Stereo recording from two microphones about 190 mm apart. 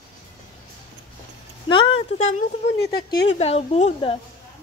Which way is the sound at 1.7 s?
30° left (ahead or behind).